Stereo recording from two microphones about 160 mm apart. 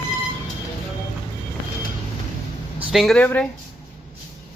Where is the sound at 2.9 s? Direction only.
Centre (ahead or behind).